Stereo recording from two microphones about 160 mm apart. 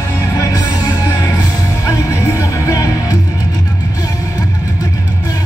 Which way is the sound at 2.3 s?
20° left (ahead or behind).